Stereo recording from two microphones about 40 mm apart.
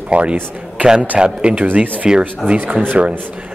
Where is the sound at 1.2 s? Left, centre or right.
Right.